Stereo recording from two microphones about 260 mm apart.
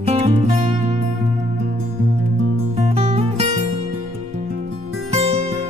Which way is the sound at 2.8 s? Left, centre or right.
Right.